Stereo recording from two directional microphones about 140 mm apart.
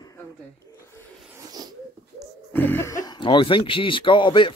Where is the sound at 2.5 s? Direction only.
15° left (ahead or behind).